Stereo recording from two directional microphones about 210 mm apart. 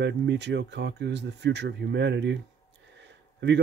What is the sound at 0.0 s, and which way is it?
Speech, 55° right (ahead or behind).